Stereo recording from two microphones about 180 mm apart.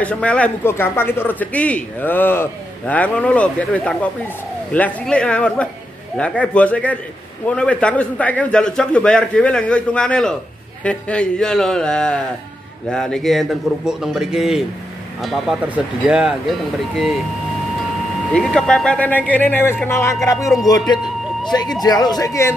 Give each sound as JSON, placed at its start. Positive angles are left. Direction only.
{"t": 0.0, "sound": "a man's voice", "side_deg": 5}
{"t": 18.3, "sound": "a man's voice", "side_deg": 5}